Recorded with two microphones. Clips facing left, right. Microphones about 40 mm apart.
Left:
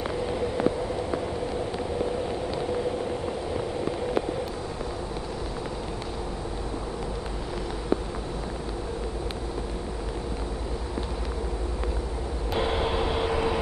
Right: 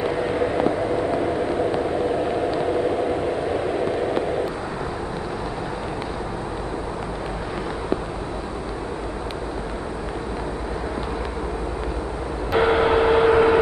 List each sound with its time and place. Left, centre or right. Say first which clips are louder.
0.0 s vehicle: right 6 dB; right
12.5 s vehicle: right 9 dB; right